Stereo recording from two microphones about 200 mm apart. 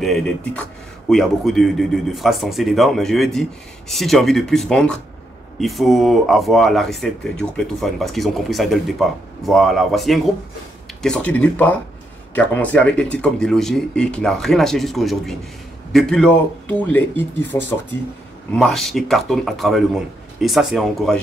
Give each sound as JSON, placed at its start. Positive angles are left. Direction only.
{"t": 0.0, "sound": "speech", "side_deg": 0}